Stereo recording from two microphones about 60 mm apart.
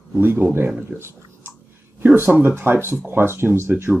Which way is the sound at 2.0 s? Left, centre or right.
Right.